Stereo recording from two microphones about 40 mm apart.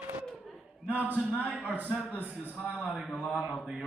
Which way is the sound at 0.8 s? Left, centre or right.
Right.